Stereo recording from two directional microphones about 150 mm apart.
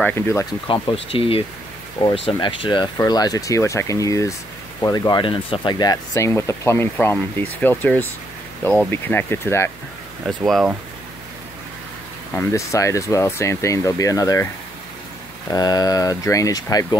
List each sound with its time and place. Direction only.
0.0 s speech: 15° left (ahead or behind)
0.8 s speech: 35° left (ahead or behind)
2.4 s speech: 35° left (ahead or behind); by 9.7 s 15° left (ahead or behind)
10.2 s speech: centre (ahead or behind)
12.4 s speech: 20° left (ahead or behind)
15.5 s speech: 25° left (ahead or behind)